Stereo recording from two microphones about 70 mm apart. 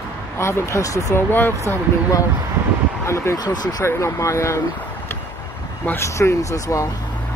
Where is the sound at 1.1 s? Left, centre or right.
Left.